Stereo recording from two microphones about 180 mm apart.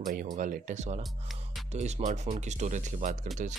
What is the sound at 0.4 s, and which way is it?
Speech, 45° right (ahead or behind).